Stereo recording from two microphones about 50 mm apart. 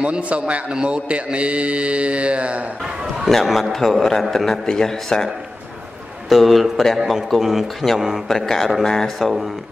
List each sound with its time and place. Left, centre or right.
0.0 s speech: right
3.3 s a man's voice: centre